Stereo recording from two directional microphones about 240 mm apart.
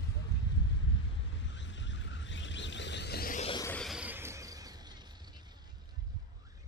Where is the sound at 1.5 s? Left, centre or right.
Left.